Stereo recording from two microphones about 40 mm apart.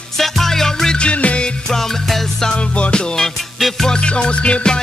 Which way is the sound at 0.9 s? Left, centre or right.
Left.